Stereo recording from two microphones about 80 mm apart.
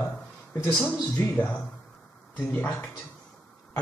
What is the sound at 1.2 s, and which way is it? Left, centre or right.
Speech, left.